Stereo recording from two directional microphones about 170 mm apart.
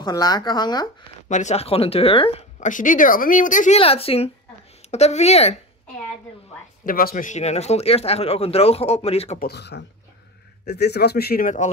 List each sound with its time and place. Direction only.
0.0 s speech: 25° left (ahead or behind)
1.3 s speech: 40° left (ahead or behind)
2.6 s a woman's voice: 50° left (ahead or behind)
6.8 s speech: 60° left (ahead or behind); by 9.4 s 35° left (ahead or behind)
9.4 s speech: 80° left; by 11.7 s 50° left (ahead or behind)